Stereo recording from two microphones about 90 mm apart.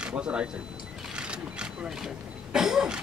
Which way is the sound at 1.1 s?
10° right (ahead or behind).